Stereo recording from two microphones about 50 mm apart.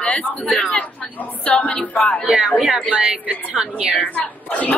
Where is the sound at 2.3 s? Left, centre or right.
Right.